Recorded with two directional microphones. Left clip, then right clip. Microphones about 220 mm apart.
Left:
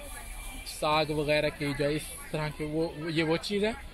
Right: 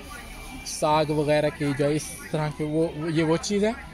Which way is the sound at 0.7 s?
10° right (ahead or behind).